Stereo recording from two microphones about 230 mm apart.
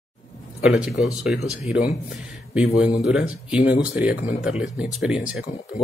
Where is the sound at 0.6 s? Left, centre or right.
Centre.